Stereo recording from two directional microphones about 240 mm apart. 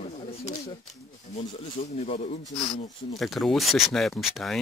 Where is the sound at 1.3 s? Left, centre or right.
Left.